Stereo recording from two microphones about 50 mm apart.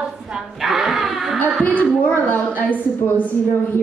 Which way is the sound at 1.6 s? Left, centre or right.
Left.